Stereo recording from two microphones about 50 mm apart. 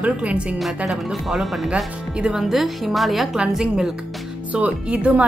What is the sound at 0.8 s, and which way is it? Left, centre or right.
Speech, centre.